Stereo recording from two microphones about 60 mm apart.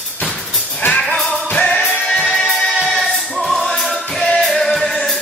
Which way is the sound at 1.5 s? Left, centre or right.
Centre.